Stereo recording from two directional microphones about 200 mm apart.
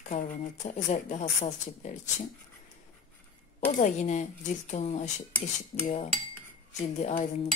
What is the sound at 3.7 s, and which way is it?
Speech, 35° left (ahead or behind).